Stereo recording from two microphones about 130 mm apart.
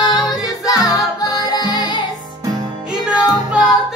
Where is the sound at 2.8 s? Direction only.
10° right (ahead or behind).